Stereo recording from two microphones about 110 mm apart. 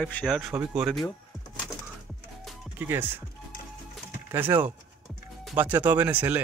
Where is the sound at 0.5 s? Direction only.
15° right (ahead or behind).